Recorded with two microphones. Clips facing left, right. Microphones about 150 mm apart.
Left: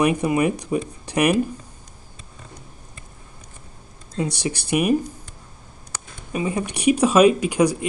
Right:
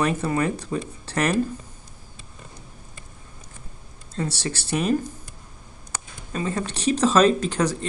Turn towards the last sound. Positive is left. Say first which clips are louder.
# left 4 dB
turn(degrees=10)  # may be behind; listen again after turning